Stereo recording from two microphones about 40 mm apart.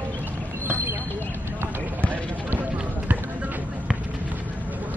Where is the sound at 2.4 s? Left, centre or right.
Right.